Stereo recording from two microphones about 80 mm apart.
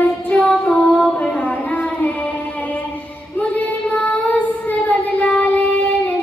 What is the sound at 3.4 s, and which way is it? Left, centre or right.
Child singing, centre.